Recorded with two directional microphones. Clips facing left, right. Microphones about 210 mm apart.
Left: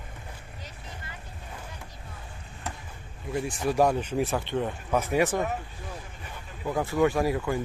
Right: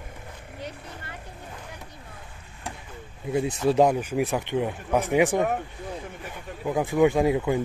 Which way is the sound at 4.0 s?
10° right (ahead or behind).